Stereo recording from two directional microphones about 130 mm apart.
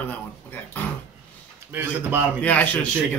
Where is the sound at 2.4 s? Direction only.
10° left (ahead or behind).